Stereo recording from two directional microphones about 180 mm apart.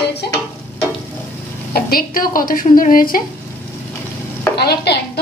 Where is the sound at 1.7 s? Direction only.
55° left (ahead or behind).